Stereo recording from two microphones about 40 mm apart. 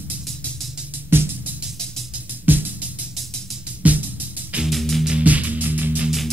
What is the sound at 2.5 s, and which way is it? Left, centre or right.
Music, right.